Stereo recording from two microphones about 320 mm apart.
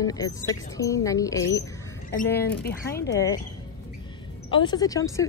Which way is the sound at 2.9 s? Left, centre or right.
Centre.